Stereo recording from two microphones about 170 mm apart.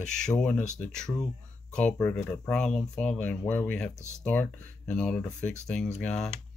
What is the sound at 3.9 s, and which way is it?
Speech, 15° right (ahead or behind).